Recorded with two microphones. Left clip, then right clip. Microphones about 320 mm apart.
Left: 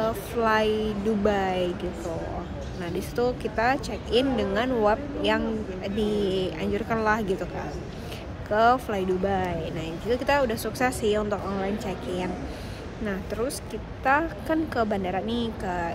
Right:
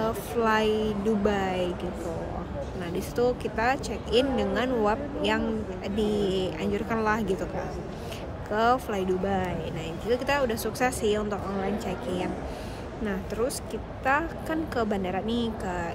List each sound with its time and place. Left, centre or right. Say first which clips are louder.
0.0 s speech: left 1 dB; centre